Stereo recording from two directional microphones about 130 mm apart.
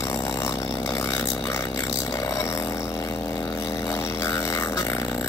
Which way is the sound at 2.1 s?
25° left (ahead or behind).